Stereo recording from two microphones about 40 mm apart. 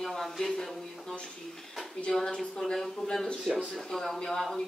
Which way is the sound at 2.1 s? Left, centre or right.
Centre.